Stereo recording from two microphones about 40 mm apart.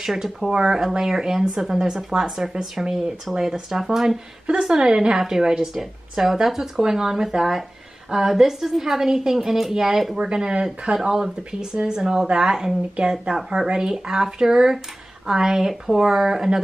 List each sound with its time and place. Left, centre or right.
0.1 s a woman's voice: centre
4.5 s a woman's voice: centre
10.2 s a woman's voice: centre